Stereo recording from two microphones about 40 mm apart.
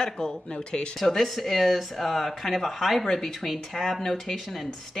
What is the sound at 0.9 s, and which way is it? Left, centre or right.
Speech, centre.